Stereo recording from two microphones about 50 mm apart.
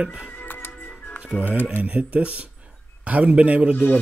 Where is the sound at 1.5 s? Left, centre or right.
Left.